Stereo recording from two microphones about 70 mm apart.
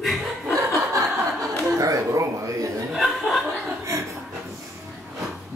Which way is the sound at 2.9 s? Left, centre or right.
Centre.